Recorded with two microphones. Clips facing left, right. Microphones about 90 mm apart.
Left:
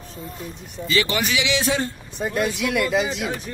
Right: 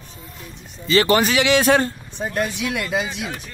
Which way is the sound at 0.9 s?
40° right (ahead or behind).